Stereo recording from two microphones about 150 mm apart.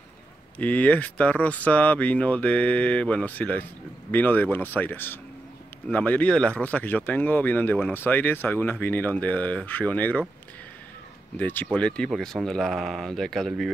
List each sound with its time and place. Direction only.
0.6 s speech: 10° left (ahead or behind)
11.3 s speech: 10° left (ahead or behind)